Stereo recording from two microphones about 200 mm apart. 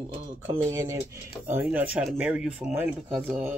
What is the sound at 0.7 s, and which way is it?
Speech, 15° right (ahead or behind).